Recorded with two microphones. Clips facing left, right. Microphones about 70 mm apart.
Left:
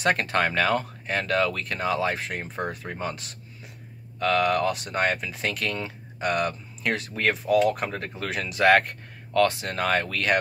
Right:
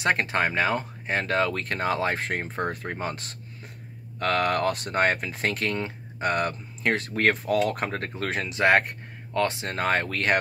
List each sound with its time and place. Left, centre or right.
0.0 s speech: right